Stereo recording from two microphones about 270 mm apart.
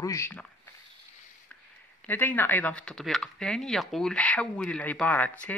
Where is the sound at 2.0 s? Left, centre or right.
Centre.